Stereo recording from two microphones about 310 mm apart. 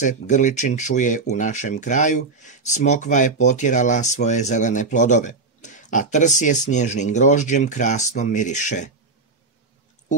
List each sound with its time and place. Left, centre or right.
0.0 s speech: left